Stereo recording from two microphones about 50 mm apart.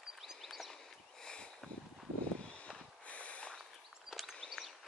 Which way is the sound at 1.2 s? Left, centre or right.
Centre.